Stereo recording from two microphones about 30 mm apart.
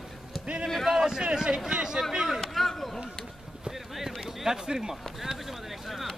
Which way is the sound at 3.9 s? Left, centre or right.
Centre.